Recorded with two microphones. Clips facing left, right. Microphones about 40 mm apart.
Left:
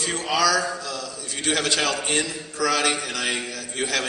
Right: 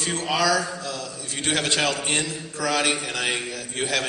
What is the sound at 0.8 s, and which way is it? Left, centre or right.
A man's voice, right.